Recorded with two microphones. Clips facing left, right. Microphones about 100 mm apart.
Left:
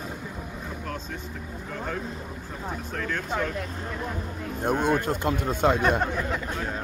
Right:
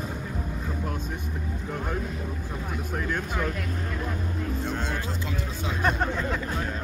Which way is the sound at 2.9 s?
15° right (ahead or behind).